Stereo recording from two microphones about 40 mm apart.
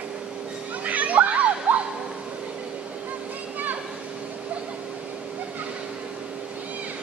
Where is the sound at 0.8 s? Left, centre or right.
Right.